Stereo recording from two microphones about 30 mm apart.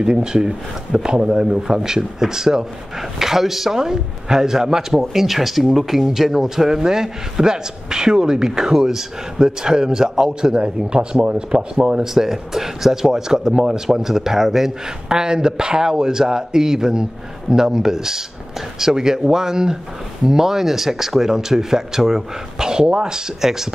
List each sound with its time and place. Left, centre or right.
0.0 s speech: right; by 3.7 s centre
3.7 s speech: centre; by 11.2 s right
11.5 s speech: centre